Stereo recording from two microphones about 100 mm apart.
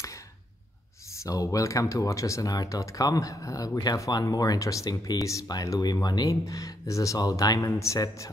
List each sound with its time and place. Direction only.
1.2 s speech: 35° left (ahead or behind)